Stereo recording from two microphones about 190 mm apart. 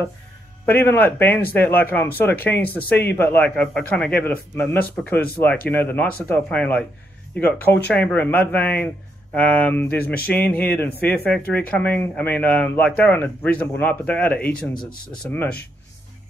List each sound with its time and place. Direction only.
0.7 s speech: 10° left (ahead or behind)
14.5 s speech: 50° left (ahead or behind)
15.2 s speech: 10° left (ahead or behind)